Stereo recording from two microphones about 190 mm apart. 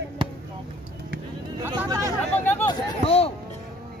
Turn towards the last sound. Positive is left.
turn(degrees=30)  # may be behind; listen again after turning